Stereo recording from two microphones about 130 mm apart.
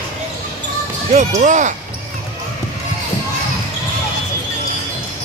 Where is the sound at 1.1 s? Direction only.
65° right (ahead or behind).